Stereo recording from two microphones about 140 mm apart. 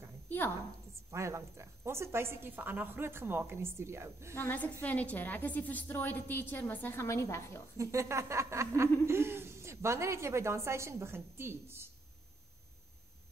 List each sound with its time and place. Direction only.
1.1 s a woman's voice: 20° right (ahead or behind)
4.4 s a woman's voice: 15° left (ahead or behind)
7.7 s a woman's voice: 20° right (ahead or behind)